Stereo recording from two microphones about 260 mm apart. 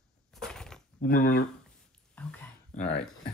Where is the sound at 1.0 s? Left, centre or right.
Left.